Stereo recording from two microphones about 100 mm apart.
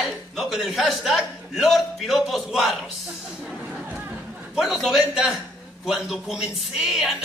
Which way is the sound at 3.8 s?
15° right (ahead or behind).